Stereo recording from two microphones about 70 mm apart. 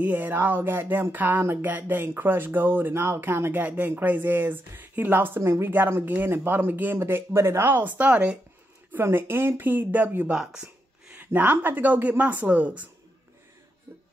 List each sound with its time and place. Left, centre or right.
0.0 s speech: right
9.0 s speech: right
10.3 s speech: centre
11.1 s a sound: right
11.5 s speech: right